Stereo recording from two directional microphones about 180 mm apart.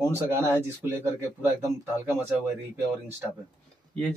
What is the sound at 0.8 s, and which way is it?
A man's voice, 15° right (ahead or behind).